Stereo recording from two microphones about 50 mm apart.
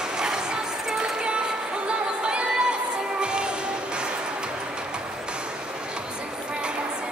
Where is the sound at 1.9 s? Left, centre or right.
Centre.